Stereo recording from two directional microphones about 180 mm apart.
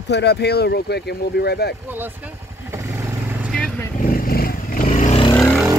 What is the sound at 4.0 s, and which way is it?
Vehicle, 50° left (ahead or behind).